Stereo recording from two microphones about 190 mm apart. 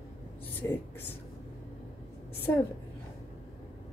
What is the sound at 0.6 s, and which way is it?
Speech, 15° left (ahead or behind).